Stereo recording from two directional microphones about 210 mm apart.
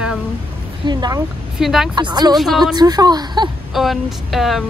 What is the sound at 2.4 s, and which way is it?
Speech, centre (ahead or behind).